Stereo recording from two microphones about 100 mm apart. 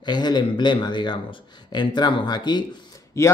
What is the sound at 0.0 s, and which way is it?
A man's voice, 45° left (ahead or behind).